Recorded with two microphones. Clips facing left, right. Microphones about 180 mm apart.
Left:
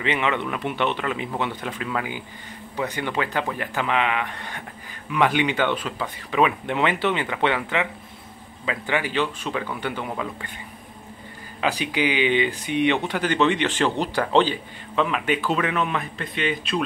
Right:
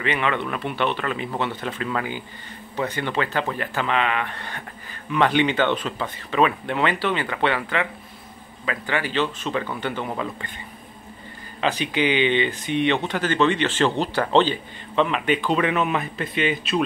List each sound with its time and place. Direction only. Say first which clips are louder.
0.0 s speech: even; 20° left (ahead or behind)
11.6 s speech: right 1 dB; 10° left (ahead or behind)